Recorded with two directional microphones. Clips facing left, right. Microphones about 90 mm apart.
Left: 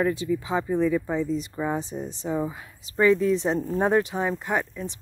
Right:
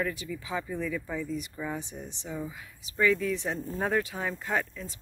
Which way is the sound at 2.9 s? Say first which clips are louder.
Left 6 dB; 30° left (ahead or behind).